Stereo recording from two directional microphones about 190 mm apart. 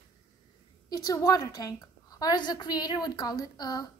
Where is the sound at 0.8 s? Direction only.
20° left (ahead or behind).